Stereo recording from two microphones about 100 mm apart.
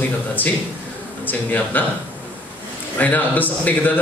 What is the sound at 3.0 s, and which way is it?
Speech, 15° left (ahead or behind).